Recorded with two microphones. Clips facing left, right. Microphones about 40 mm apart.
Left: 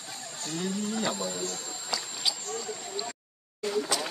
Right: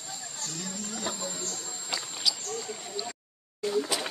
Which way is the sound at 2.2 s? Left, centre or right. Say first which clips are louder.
Right 1 dB; left.